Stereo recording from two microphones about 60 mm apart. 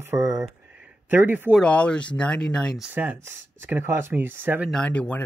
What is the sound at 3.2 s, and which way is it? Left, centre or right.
Speech, right.